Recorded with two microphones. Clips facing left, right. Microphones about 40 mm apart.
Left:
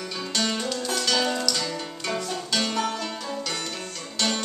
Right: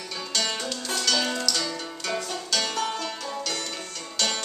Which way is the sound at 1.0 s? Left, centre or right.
Centre.